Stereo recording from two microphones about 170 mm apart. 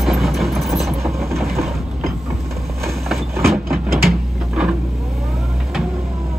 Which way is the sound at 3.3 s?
15° right (ahead or behind).